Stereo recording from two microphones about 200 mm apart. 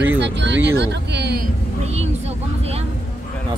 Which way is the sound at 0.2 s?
60° right (ahead or behind).